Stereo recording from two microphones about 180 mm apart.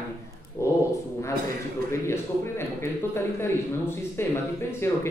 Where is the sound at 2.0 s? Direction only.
15° left (ahead or behind).